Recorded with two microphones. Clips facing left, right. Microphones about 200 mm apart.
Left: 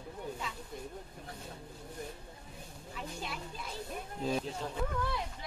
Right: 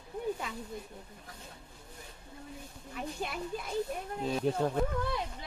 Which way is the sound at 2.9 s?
55° right (ahead or behind).